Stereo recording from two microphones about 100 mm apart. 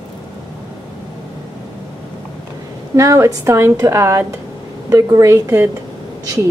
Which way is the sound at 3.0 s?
30° right (ahead or behind).